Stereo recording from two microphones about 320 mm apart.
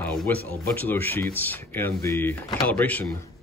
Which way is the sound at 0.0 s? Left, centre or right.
Centre.